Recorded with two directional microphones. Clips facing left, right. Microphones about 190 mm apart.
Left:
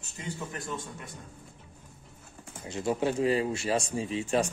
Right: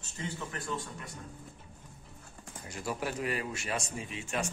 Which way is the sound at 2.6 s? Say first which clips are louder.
Left 8 dB; 25° left (ahead or behind).